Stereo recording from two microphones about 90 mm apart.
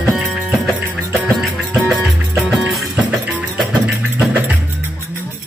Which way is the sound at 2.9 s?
15° right (ahead or behind).